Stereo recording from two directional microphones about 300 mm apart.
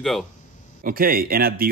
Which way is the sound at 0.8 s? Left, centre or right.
Right.